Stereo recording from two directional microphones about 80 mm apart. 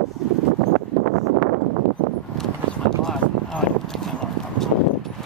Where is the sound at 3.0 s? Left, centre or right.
Centre.